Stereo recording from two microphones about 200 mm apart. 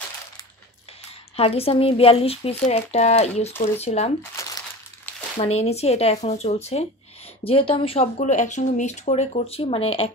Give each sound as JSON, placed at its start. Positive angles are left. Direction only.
{"t": 1.3, "sound": "speech", "side_deg": 30}
{"t": 4.4, "sound": "crumpling", "side_deg": 15}
{"t": 5.4, "sound": "speech", "side_deg": 30}